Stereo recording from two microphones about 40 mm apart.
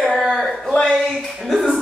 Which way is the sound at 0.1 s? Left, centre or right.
Centre.